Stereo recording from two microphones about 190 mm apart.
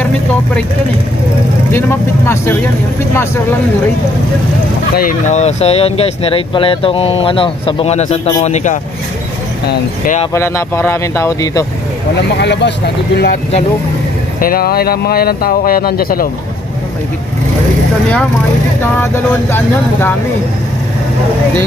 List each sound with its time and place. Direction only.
1.7 s speech: 10° left (ahead or behind)
4.9 s speech: 45° left (ahead or behind)
10.3 s speech: 15° left (ahead or behind)
12.4 s speech: 65° left (ahead or behind)
14.4 s speech: 50° left (ahead or behind)
18.8 s speech: 10° left (ahead or behind)